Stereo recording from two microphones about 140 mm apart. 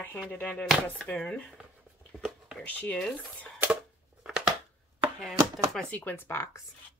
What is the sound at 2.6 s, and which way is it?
Speech, 10° left (ahead or behind).